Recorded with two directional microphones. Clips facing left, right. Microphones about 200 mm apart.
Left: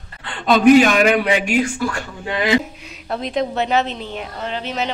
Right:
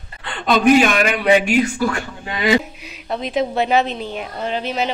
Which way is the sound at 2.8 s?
5° right (ahead or behind).